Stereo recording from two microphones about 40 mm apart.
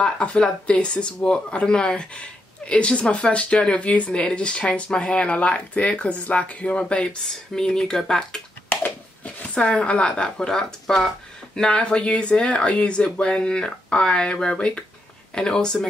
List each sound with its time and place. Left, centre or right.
0.0 s speech: left
7.2 s speech: centre
11.7 s speech: left